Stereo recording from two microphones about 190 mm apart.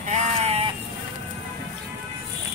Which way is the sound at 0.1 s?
35° right (ahead or behind).